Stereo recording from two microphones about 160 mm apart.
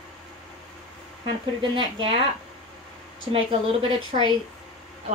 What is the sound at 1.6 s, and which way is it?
Speech, 30° right (ahead or behind).